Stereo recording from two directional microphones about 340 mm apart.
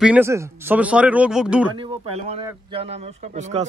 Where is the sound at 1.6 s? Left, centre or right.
Centre.